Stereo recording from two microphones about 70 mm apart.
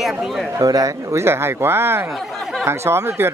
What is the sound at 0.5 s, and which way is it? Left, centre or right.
Speech, right.